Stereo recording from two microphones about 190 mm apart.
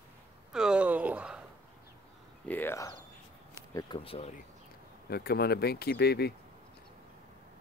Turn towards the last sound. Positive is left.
turn(degrees=60)  # may be behind; listen again after turning